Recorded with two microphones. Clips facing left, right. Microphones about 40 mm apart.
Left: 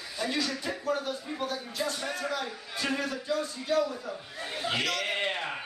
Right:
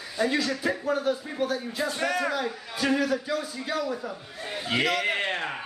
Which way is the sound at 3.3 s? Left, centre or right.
Centre.